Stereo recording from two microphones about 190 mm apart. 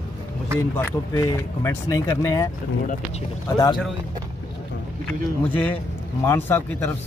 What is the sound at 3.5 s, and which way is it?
Speech, 20° left (ahead or behind).